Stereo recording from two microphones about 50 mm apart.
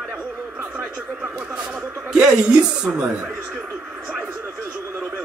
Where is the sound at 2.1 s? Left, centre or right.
Centre.